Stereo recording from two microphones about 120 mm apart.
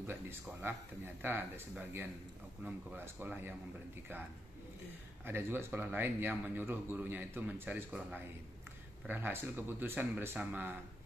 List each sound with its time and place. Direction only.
0.0 s speech: 20° right (ahead or behind)
5.2 s speech: 20° right (ahead or behind)